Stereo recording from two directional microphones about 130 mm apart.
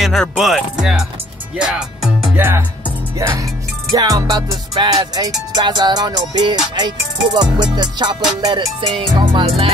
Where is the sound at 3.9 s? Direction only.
30° right (ahead or behind).